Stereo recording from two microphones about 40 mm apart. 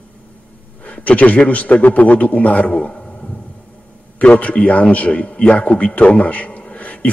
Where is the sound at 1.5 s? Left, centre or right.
Left.